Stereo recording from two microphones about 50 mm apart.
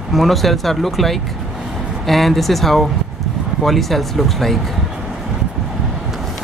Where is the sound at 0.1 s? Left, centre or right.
Centre.